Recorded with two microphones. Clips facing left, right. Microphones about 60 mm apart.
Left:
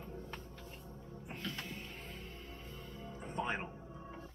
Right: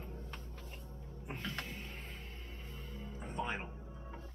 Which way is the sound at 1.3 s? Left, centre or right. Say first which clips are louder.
Right 1 dB; centre.